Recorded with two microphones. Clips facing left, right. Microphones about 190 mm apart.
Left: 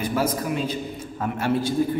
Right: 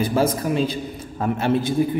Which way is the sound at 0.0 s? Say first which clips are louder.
Right 4 dB; 30° right (ahead or behind).